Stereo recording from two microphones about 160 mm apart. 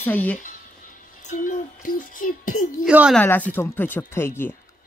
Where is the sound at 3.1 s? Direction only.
10° left (ahead or behind).